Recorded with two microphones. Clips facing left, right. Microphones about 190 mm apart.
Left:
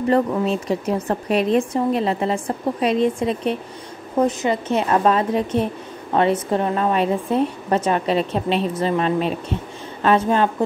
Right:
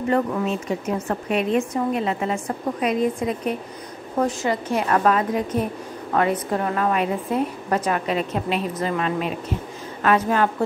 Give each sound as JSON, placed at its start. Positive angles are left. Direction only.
{"t": 0.1, "sound": "a woman's voice", "side_deg": 35}